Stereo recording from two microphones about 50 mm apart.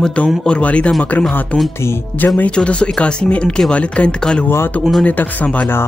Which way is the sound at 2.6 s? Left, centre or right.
Left.